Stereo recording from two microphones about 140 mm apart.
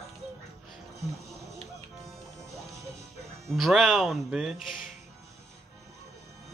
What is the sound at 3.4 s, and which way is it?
Speech, centre (ahead or behind).